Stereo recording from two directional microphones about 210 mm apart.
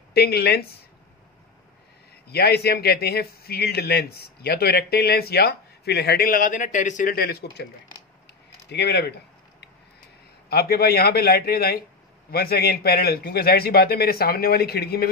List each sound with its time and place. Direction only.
0.1 s speech: 50° left (ahead or behind)
2.2 s speech: 50° left (ahead or behind)
8.6 s speech: 50° left (ahead or behind)
10.5 s speech: 45° left (ahead or behind)